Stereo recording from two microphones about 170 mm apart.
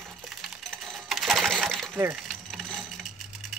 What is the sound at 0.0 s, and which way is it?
Sewing machine, centre (ahead or behind).